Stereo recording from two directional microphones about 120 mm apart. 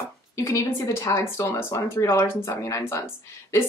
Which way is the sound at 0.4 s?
20° left (ahead or behind).